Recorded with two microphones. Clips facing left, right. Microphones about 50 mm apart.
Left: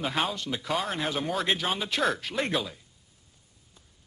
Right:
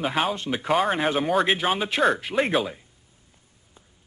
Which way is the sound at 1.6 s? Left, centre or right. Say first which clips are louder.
Right 6 dB; right.